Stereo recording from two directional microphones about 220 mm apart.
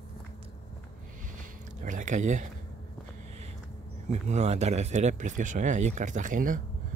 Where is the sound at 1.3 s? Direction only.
35° right (ahead or behind).